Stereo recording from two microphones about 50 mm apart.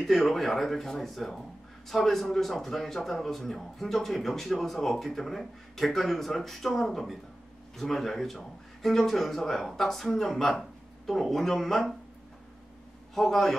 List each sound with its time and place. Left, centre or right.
0.0 s speech: centre
13.1 s speech: centre